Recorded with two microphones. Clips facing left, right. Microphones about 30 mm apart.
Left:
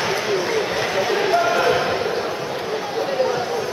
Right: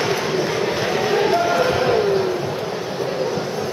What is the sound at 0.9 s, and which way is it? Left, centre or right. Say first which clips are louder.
Basketball bounce: even; centre.